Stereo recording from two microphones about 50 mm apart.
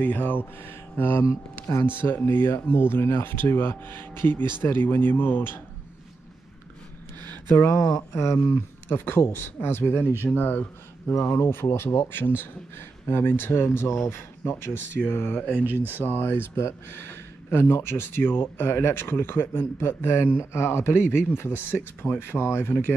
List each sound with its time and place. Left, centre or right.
0.0 s speech: left
7.6 s speech: left
8.8 s speech: left
11.1 s speech: left
15.3 s speech: left
15.6 s speech: right
16.0 s speech: left
16.5 s speech: left